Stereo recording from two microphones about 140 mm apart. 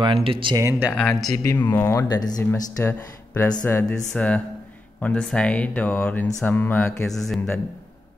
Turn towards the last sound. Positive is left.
turn(degrees=0)  # may be behind; listen again after turning